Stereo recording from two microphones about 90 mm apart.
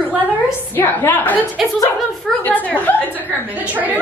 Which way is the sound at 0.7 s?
25° left (ahead or behind).